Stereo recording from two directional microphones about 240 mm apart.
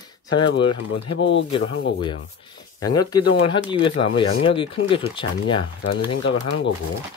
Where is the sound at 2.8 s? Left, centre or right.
Centre.